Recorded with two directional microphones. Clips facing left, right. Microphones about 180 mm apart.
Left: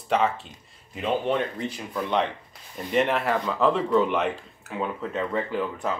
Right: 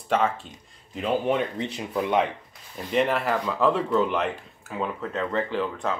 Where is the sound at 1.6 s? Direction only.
20° right (ahead or behind).